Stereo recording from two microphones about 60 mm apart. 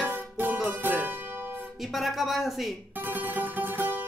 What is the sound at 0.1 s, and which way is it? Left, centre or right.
Music, right.